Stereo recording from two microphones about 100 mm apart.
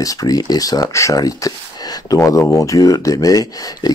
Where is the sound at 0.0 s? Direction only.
35° left (ahead or behind).